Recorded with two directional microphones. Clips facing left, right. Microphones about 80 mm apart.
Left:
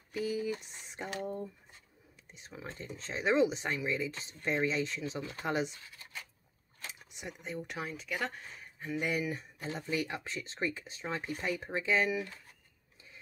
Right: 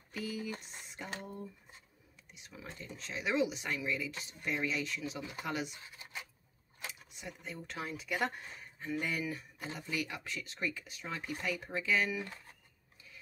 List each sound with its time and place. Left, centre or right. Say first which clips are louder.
0.1 s a sound: left 6 dB; left
2.3 s speech: left 4 dB; left
5.7 s speech: right 1 dB; centre
6.9 s speech: left 6 dB; left
7.8 s speech: right 3 dB; centre
8.7 s a sound: left 1 dB; centre
9.0 s speech: left 4 dB; centre